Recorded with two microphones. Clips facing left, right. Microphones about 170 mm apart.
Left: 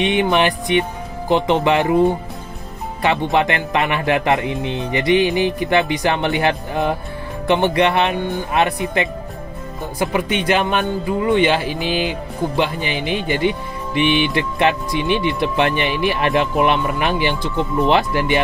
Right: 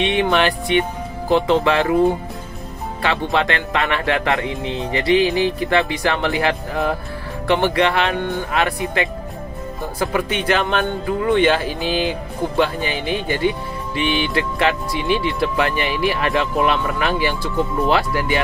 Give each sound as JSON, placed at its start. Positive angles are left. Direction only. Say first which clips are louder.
{"t": 0.1, "sound": "speech", "louder": "left 1 dB", "side_deg": 15}
{"t": 3.0, "sound": "speech", "louder": "left 3 dB", "side_deg": 20}